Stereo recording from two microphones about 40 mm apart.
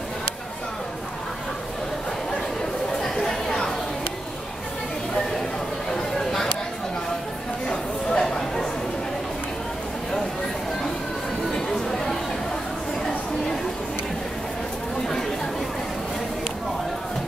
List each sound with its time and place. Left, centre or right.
3.0 s chatter: centre
7.6 s a sound: left
11.5 s chatter: centre
15.0 s chatter: centre